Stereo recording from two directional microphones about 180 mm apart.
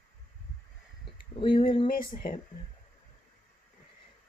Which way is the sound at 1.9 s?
50° left (ahead or behind).